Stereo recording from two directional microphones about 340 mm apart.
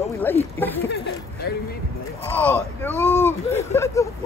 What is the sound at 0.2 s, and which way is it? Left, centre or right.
Speech, centre.